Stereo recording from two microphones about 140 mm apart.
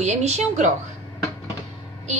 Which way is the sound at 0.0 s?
55° right (ahead or behind).